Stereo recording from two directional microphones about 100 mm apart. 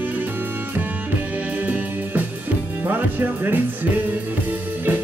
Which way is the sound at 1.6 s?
15° right (ahead or behind).